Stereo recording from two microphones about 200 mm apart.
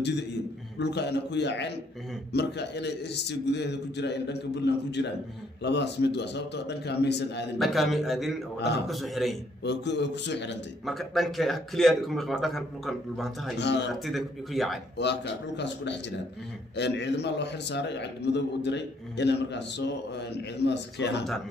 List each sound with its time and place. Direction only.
0.7 s a man's voice: 60° left (ahead or behind)
7.5 s a man's voice: centre (ahead or behind)
9.6 s a man's voice: 60° left (ahead or behind)
10.9 s a man's voice: centre (ahead or behind)
13.6 s a man's voice: 60° left (ahead or behind)
13.9 s a man's voice: centre (ahead or behind)
15.0 s a man's voice: 60° left (ahead or behind)